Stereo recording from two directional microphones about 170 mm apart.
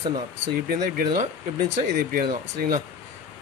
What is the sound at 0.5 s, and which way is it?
Speech, 55° right (ahead or behind).